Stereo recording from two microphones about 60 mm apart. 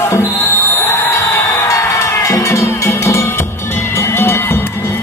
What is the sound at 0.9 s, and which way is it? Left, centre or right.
Music, left.